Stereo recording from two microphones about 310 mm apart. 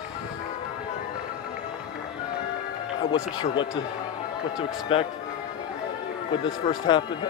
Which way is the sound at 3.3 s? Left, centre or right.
Centre.